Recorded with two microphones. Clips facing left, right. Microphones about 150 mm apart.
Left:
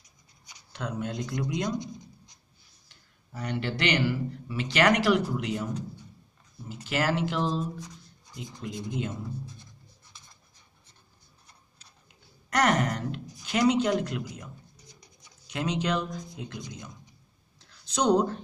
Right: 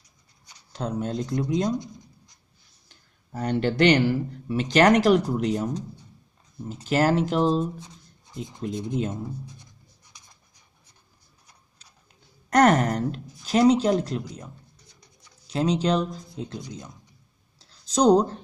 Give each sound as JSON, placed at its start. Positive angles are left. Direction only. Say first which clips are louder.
{"t": 0.7, "sound": "speech", "louder": "right 5 dB", "side_deg": -35}
{"t": 3.3, "sound": "speech", "louder": "right 7 dB", "side_deg": -45}
{"t": 12.4, "sound": "speech", "louder": "right 6 dB", "side_deg": -45}
{"t": 15.4, "sound": "speech", "louder": "right 6 dB", "side_deg": -35}
{"t": 17.6, "sound": "a sound", "louder": "right 6 dB", "side_deg": -35}